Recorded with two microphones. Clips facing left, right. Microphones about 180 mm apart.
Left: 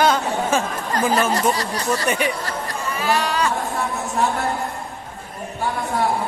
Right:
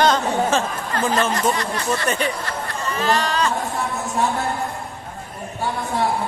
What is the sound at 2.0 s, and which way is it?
Speech, 15° left (ahead or behind).